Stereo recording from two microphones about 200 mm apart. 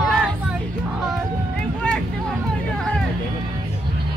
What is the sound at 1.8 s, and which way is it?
Vehicle, 5° left (ahead or behind).